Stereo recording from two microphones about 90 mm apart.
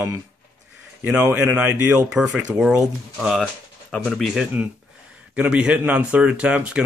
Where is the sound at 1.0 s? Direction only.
25° right (ahead or behind).